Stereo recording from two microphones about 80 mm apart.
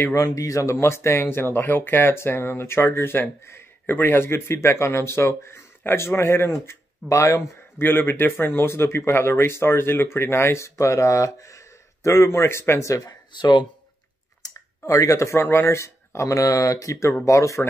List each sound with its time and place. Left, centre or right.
0.1 s speech: left
7.1 s speech: left
7.8 s speech: left
13.0 s speech: left
14.4 s a sound: left
15.4 s speech: left